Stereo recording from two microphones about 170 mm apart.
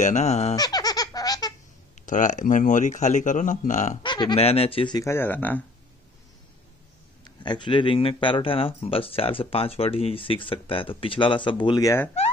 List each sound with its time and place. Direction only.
0.0 s speech: 40° left (ahead or behind)
0.6 s baby laughter: 20° left (ahead or behind)
2.0 s speech: 45° left (ahead or behind)
4.0 s speech: 25° left (ahead or behind); by 5.6 s 10° left (ahead or behind)
7.2 s speech: 25° left (ahead or behind)